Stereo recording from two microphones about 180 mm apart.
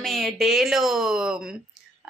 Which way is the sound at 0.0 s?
Centre (ahead or behind).